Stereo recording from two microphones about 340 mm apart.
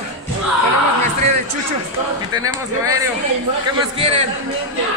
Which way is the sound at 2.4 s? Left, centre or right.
Centre.